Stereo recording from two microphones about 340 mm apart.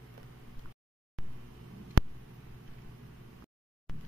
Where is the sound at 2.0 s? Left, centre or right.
Right.